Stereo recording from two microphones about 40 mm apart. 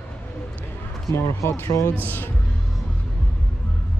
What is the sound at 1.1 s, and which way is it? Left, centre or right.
Speech, left.